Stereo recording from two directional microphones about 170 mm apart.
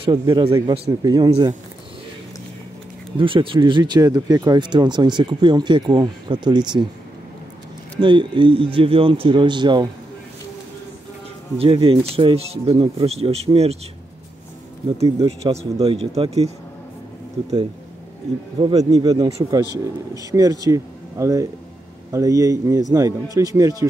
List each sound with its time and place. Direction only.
0.0 s speech: 30° right (ahead or behind)
3.2 s speech: 30° right (ahead or behind)
8.0 s speech: 30° right (ahead or behind)
11.5 s speech: 30° right (ahead or behind)
15.0 s speech: 20° right (ahead or behind)
15.2 s speech: 35° right (ahead or behind)
18.6 s speech: 25° right (ahead or behind)